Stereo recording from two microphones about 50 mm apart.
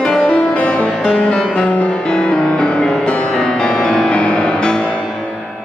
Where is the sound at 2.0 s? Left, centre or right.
Centre.